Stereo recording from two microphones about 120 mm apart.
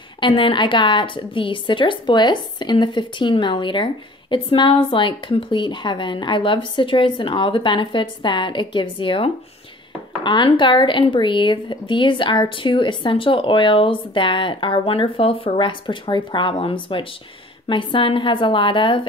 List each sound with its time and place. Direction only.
0.2 s a woman's voice: 45° left (ahead or behind)